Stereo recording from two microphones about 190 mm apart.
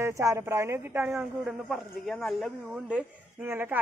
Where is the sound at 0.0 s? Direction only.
15° right (ahead or behind).